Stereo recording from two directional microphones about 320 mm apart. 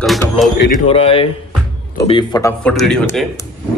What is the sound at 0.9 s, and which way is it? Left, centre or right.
A man's voice, centre.